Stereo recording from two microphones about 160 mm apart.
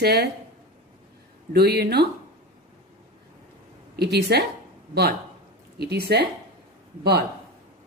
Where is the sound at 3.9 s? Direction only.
90° right.